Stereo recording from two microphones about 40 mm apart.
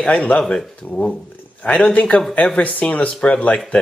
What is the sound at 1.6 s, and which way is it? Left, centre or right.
Speech, left.